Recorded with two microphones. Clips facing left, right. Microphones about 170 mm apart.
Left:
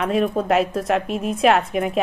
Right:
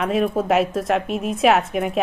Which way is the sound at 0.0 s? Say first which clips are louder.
Even; centre (ahead or behind).